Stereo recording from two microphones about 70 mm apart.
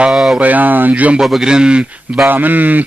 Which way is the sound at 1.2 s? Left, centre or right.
Centre.